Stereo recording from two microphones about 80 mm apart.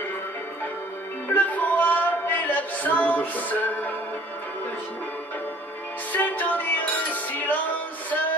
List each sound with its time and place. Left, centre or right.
1.3 s music: left
6.1 s music: left